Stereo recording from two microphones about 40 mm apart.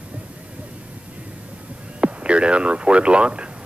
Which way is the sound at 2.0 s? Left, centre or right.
Right.